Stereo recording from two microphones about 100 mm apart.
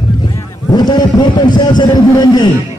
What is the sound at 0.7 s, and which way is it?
A man's voice, 45° left (ahead or behind).